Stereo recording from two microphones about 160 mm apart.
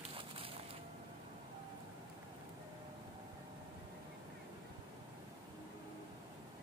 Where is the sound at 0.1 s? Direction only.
35° right (ahead or behind).